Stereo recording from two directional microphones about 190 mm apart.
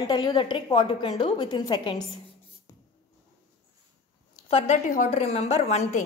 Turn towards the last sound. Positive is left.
turn(degrees=40)  # may be behind; listen again after turning